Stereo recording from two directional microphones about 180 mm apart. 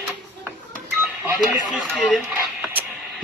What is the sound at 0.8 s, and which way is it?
Telephone dialing, 10° right (ahead or behind).